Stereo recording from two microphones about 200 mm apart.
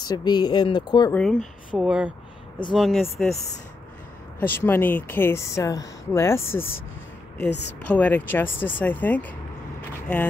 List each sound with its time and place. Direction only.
0.0 s speech: 20° left (ahead or behind)
1.1 s speech: 5° left (ahead or behind)
1.8 s speech: 5° right (ahead or behind)
4.4 s speech: 10° left (ahead or behind)
8.0 s speech: 10° left (ahead or behind)
9.8 s vehicle: 10° left (ahead or behind)